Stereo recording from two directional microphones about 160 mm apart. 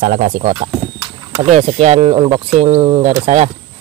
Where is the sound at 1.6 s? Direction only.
40° right (ahead or behind).